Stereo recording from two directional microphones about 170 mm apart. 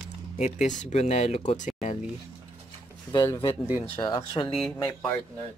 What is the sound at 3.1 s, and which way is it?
Speech, 30° left (ahead or behind).